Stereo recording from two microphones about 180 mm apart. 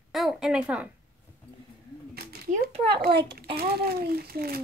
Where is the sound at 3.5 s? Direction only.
55° right (ahead or behind).